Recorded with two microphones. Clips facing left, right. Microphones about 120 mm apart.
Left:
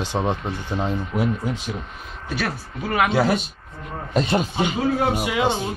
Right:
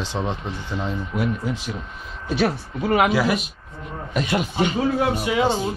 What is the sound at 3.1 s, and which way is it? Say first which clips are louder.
Speech: left 1 dB; 30° left (ahead or behind).